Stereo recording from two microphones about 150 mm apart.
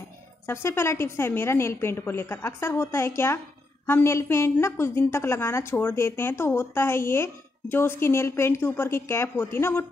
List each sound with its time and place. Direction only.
0.5 s a woman's voice: 15° left (ahead or behind)